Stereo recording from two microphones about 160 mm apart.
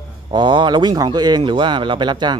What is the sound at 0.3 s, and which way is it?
Speech, 30° right (ahead or behind).